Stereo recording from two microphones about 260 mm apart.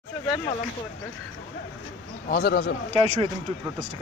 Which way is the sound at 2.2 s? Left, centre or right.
Left.